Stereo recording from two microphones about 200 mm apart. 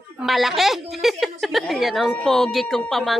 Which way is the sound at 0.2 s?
Centre (ahead or behind).